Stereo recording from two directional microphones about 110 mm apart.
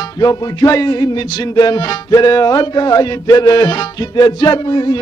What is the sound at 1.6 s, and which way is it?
Music, 40° left (ahead or behind).